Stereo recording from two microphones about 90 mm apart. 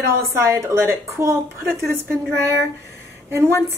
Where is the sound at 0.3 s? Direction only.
30° right (ahead or behind).